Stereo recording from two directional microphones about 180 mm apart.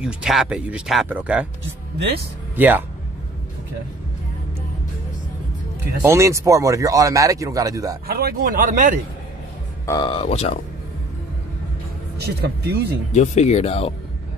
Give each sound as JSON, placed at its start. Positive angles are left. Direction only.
{"t": 0.0, "sound": "speech", "side_deg": 0}
{"t": 2.5, "sound": "speech", "side_deg": -10}
{"t": 6.0, "sound": "speech", "side_deg": -15}
{"t": 8.1, "sound": "speech", "side_deg": -60}
{"t": 9.8, "sound": "speech", "side_deg": 25}
{"t": 10.2, "sound": "speech", "side_deg": 35}
{"t": 12.2, "sound": "speech", "side_deg": -65}
{"t": 13.1, "sound": "speech", "side_deg": 40}